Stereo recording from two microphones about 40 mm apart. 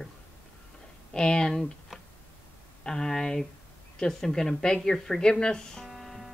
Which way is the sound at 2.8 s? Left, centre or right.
Centre.